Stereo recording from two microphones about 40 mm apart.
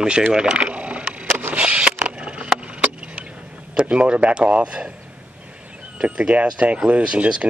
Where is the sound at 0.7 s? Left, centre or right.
Right.